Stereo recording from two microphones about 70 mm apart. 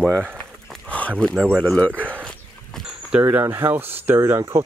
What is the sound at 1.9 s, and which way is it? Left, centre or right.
Speech, right.